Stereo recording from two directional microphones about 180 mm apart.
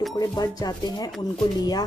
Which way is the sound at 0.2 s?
20° left (ahead or behind).